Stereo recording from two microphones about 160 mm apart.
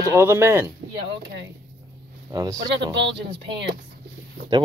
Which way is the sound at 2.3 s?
25° right (ahead or behind).